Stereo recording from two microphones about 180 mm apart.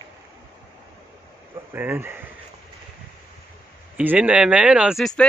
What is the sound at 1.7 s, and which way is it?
Speech, 10° right (ahead or behind).